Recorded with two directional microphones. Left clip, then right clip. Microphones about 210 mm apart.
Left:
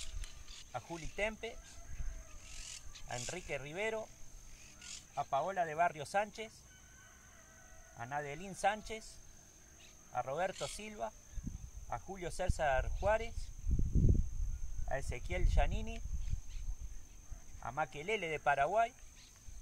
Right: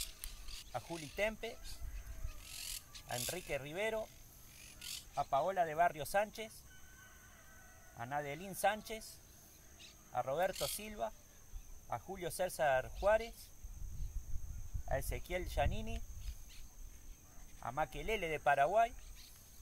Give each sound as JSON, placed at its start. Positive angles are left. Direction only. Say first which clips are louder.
{"t": 0.0, "sound": "a sound", "louder": "right 3 dB", "side_deg": -55}
{"t": 0.7, "sound": "speech", "louder": "even", "side_deg": 0}
{"t": 3.3, "sound": "speech", "louder": "even", "side_deg": 0}
{"t": 4.7, "sound": "a sound", "louder": "right 3 dB", "side_deg": -35}
{"t": 5.1, "sound": "speech", "louder": "right 1 dB", "side_deg": 0}
{"t": 8.0, "sound": "speech", "louder": "even", "side_deg": 0}
{"t": 10.1, "sound": "speech", "louder": "right 1 dB", "side_deg": 0}
{"t": 14.9, "sound": "speech", "louder": "right 1 dB", "side_deg": 0}
{"t": 17.6, "sound": "speech", "louder": "even", "side_deg": 0}